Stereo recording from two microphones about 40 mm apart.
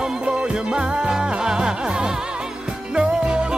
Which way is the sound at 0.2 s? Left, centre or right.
Right.